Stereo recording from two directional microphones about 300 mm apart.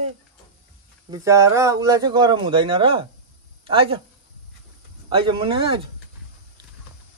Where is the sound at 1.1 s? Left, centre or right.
Centre.